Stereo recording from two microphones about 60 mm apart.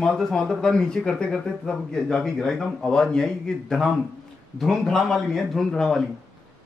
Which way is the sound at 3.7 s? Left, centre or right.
Centre.